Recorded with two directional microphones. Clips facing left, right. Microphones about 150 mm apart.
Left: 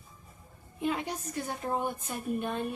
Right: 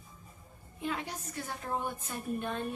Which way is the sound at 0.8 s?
20° left (ahead or behind).